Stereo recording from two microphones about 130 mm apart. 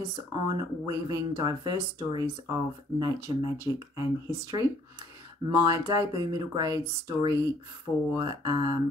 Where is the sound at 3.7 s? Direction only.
35° right (ahead or behind).